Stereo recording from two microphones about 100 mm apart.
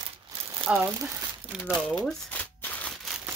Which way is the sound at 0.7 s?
10° right (ahead or behind).